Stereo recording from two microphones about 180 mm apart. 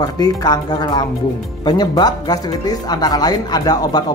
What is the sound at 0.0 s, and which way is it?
Speech, 20° left (ahead or behind).